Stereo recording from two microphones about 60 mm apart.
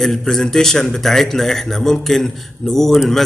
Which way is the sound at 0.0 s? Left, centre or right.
Centre.